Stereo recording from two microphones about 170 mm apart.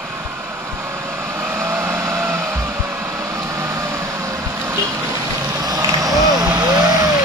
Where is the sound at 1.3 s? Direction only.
15° right (ahead or behind).